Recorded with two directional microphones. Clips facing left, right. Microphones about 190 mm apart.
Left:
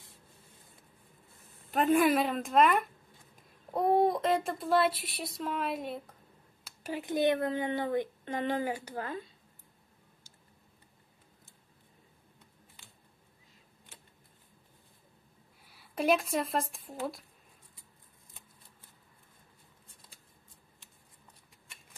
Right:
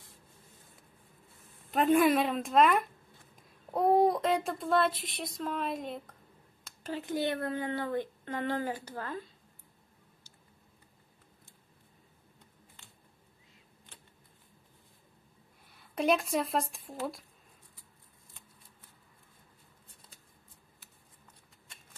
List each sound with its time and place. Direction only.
1.7 s a sound: centre (ahead or behind)
6.6 s speech: 10° left (ahead or behind)
15.6 s speech: 5° left (ahead or behind)